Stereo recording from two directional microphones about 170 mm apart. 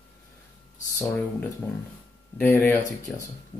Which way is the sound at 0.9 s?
15° left (ahead or behind).